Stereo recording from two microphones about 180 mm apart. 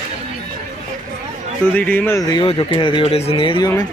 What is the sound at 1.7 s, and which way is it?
Speech, 10° left (ahead or behind).